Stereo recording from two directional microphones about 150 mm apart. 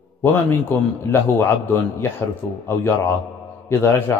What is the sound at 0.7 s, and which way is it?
A man's voice, 15° left (ahead or behind).